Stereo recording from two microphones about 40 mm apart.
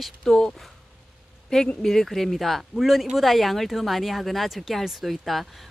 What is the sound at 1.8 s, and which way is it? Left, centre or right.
Speech, centre.